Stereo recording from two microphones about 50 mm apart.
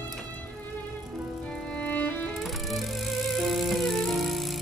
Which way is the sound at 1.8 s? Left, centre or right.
Left.